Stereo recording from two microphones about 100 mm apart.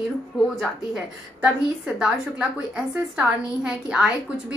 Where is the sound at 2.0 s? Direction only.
10° right (ahead or behind).